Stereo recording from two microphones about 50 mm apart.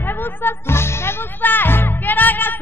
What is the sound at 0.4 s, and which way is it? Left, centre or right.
Speech, left.